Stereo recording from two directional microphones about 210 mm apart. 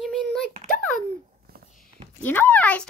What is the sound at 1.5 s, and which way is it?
Walk, 45° right (ahead or behind).